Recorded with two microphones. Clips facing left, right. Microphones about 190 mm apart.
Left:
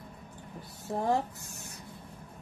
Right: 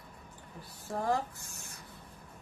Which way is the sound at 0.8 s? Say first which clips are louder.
Left 3 dB; 25° left (ahead or behind).